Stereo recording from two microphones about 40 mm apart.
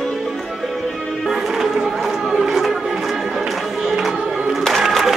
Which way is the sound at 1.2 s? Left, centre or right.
Centre.